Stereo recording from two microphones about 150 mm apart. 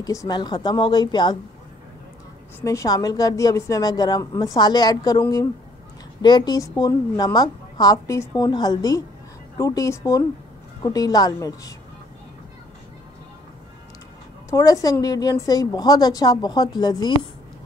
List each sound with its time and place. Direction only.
0.0 s a woman's voice: 25° left (ahead or behind)
2.6 s a woman's voice: 20° left (ahead or behind)
6.2 s a woman's voice: 30° left (ahead or behind)
14.5 s a woman's voice: 25° left (ahead or behind)